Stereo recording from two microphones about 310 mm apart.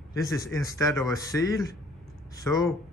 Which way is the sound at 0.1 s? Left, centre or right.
Centre.